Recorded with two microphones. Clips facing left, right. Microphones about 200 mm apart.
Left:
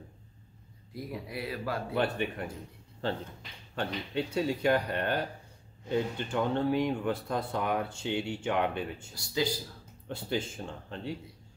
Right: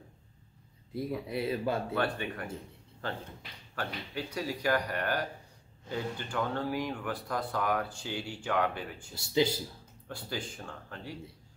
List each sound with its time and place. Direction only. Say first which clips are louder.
1.2 s speech: right 4 dB; 25° right (ahead or behind)
2.0 s speech: left 2 dB; 25° left (ahead or behind)
3.7 s speech: left 5 dB; 25° left (ahead or behind)
9.1 s speech: right 4 dB; 25° right (ahead or behind)
10.0 s speech: left 5 dB; 25° left (ahead or behind)